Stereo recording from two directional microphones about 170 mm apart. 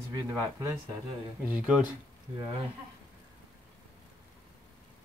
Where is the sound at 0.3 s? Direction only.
15° right (ahead or behind).